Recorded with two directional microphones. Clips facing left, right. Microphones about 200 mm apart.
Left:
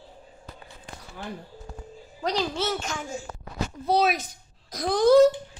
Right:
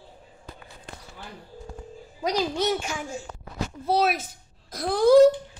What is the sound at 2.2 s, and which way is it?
A woman's voice, 15° right (ahead or behind).